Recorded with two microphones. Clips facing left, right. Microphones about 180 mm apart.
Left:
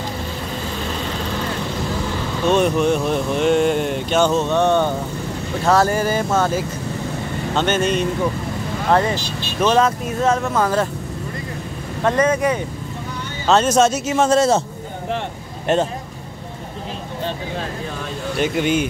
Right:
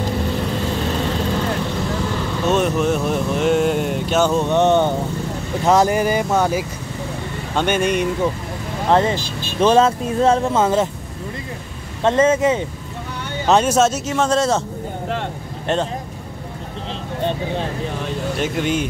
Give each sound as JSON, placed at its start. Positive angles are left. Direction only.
{"t": 2.4, "sound": "speech", "side_deg": 0}
{"t": 12.0, "sound": "speech", "side_deg": -25}
{"t": 13.5, "sound": "speech", "side_deg": -15}
{"t": 13.7, "sound": "a man's voice", "side_deg": 0}
{"t": 15.6, "sound": "speech", "side_deg": 10}
{"t": 18.4, "sound": "speech", "side_deg": 0}